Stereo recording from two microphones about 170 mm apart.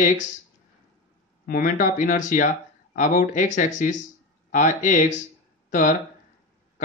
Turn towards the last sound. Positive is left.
turn(degrees=50)  # may be behind; listen again after turning